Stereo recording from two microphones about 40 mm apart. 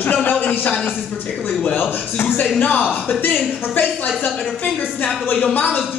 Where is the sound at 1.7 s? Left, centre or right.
Left.